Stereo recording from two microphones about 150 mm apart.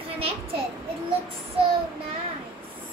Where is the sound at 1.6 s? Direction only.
40° right (ahead or behind).